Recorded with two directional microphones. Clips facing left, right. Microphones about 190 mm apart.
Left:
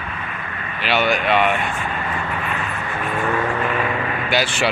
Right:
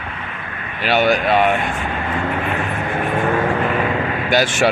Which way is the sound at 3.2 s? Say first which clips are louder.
Right 2 dB; 30° right (ahead or behind).